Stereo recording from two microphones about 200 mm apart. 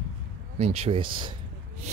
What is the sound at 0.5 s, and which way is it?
Speech, 30° right (ahead or behind).